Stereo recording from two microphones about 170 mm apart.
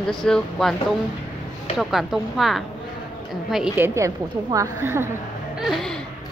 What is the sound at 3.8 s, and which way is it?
A woman's voice, 20° right (ahead or behind).